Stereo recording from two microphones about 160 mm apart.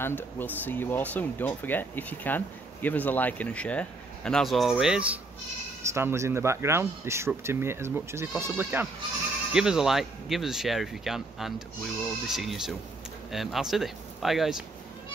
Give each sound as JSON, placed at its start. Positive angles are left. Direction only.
{"t": 0.0, "sound": "speech", "side_deg": 10}